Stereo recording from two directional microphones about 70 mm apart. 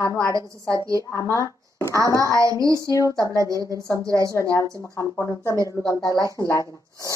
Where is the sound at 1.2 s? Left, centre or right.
Right.